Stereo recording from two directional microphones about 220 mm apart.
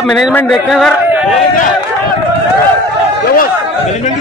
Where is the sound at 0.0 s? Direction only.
Centre (ahead or behind).